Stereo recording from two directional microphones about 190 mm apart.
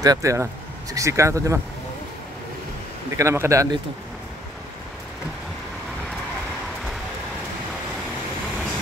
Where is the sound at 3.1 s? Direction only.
15° right (ahead or behind).